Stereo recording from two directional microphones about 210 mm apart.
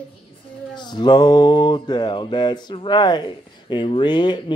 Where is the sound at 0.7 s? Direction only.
20° left (ahead or behind).